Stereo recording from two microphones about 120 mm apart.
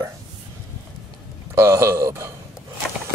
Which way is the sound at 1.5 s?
25° right (ahead or behind).